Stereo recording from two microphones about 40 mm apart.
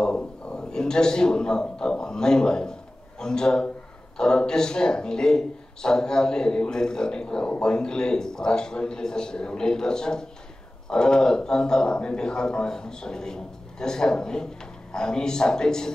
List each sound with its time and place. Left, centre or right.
0.0 s a man's voice: centre